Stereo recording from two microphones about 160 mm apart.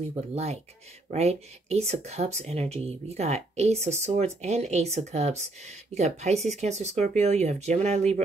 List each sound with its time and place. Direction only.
0.3 s speech: 40° right (ahead or behind)